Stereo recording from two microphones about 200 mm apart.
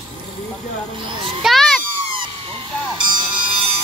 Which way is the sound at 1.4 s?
Centre (ahead or behind).